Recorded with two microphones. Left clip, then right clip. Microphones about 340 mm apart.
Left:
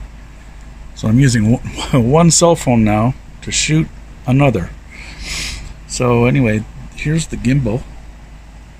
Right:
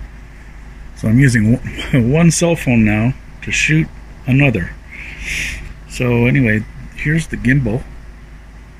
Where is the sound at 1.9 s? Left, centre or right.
Left.